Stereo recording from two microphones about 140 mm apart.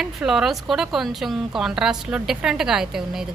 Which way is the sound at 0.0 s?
Centre (ahead or behind).